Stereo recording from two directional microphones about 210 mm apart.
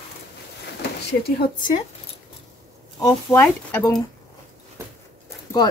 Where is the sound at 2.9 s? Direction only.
15° left (ahead or behind).